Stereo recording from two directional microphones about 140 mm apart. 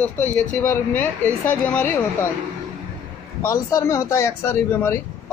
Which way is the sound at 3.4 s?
20° left (ahead or behind).